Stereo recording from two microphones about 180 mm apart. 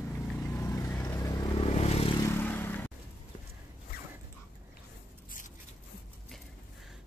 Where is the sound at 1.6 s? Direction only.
35° left (ahead or behind).